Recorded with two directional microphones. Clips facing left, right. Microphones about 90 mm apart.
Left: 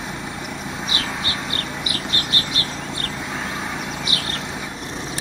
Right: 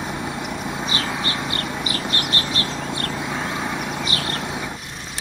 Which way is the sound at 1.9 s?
35° right (ahead or behind).